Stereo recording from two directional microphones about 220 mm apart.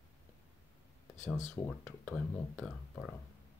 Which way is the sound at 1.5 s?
10° left (ahead or behind).